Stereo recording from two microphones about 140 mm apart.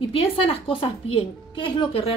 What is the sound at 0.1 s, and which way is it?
A woman's voice, 45° left (ahead or behind).